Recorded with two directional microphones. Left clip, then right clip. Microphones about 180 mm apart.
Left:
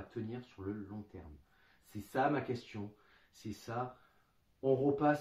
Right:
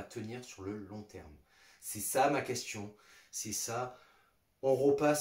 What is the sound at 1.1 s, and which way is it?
Speech, 10° right (ahead or behind).